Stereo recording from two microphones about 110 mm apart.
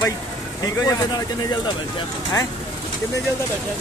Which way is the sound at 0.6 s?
35° left (ahead or behind).